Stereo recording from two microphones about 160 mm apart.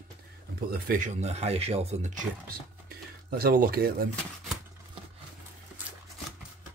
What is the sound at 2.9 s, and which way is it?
Speech, 70° right (ahead or behind).